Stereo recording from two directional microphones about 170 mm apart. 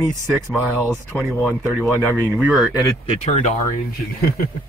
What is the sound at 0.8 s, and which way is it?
Speech, 10° left (ahead or behind).